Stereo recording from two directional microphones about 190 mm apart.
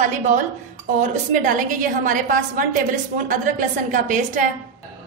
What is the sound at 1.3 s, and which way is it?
A woman's voice, 45° right (ahead or behind).